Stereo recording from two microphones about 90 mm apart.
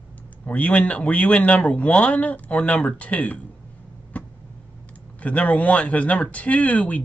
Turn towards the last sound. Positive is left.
turn(degrees=15)  # may be behind; listen again after turning